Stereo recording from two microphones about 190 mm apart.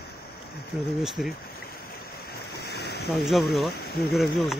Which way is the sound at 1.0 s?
Centre (ahead or behind).